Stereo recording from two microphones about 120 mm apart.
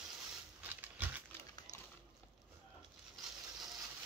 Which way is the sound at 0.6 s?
15° right (ahead or behind).